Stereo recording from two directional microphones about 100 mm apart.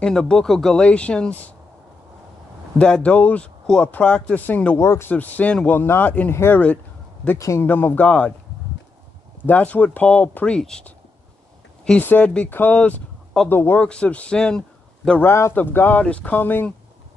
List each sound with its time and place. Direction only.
0.0 s speech: 5° left (ahead or behind)
2.8 s speech: 10° left (ahead or behind)
4.7 s speech: 30° left (ahead or behind)
5.1 s speech: 15° left (ahead or behind)
7.3 s speech: 30° left (ahead or behind)
7.6 s speech: 20° left (ahead or behind)
9.5 s speech: 15° left (ahead or behind)
13.8 s speech: 10° left (ahead or behind)
15.2 s speech: 25° left (ahead or behind)